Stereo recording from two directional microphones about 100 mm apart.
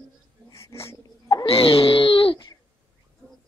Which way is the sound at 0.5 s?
25° left (ahead or behind).